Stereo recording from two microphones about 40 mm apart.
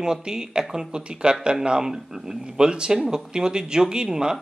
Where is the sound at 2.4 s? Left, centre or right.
Right.